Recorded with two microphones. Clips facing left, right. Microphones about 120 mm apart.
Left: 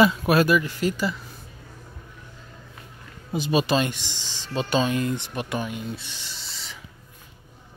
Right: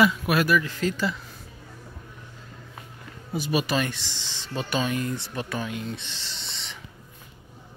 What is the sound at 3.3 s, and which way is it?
Speech, 25° left (ahead or behind).